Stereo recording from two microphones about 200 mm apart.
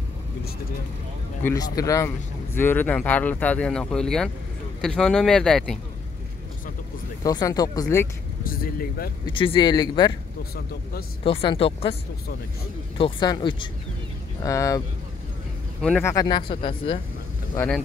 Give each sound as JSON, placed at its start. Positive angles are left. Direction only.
{"t": 1.4, "sound": "speech", "side_deg": 15}
{"t": 7.2, "sound": "speech", "side_deg": 20}
{"t": 8.5, "sound": "speech", "side_deg": 45}
{"t": 9.2, "sound": "speech", "side_deg": 25}
{"t": 10.5, "sound": "speech", "side_deg": 50}
{"t": 11.2, "sound": "speech", "side_deg": 25}
{"t": 12.9, "sound": "speech", "side_deg": 25}
{"t": 15.8, "sound": "speech", "side_deg": 10}
{"t": 17.6, "sound": "speech", "side_deg": 5}